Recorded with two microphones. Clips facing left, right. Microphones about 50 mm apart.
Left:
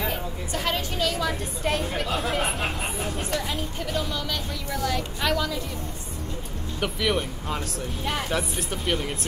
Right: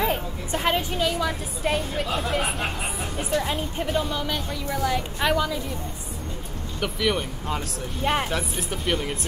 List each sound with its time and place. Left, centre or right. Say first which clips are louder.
0.0 s a woman's voice: right 4 dB; right; by 3.3 s centre
3.3 s a woman's voice: right 3 dB; centre
6.8 s speech: right 1 dB; centre
8.0 s speech: right 6 dB; right
8.3 s speech: even; centre